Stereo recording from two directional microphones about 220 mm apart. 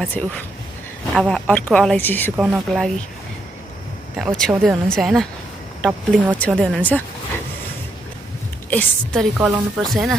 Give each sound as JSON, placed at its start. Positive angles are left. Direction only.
{"t": 0.0, "sound": "a woman's voice", "side_deg": 5}
{"t": 2.3, "sound": "a woman's voice", "side_deg": 0}
{"t": 4.2, "sound": "a woman's voice", "side_deg": 0}
{"t": 8.6, "sound": "a woman's voice", "side_deg": 5}